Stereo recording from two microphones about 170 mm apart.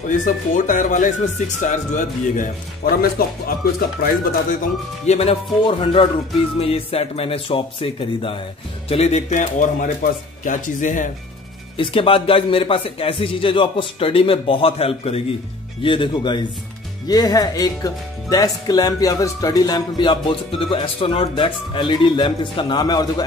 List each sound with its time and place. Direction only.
0.2 s speech: 50° left (ahead or behind)
5.0 s a man's voice: 40° left (ahead or behind)
11.7 s a man's voice: 30° left (ahead or behind)